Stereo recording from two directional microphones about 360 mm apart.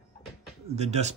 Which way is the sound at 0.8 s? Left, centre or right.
Centre.